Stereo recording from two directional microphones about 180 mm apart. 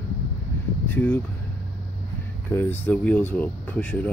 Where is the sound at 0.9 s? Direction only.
10° left (ahead or behind).